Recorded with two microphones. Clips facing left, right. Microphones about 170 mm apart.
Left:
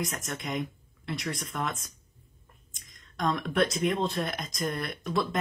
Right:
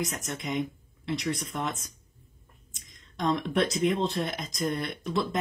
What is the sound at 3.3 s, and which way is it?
Speech, 25° right (ahead or behind).